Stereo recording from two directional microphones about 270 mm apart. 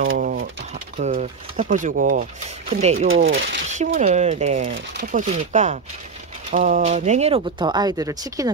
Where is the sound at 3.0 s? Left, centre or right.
Right.